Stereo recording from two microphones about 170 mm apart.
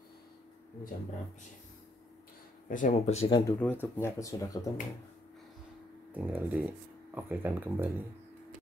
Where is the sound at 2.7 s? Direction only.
50° left (ahead or behind).